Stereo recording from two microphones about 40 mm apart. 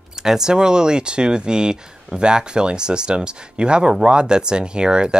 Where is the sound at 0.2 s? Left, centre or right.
Centre.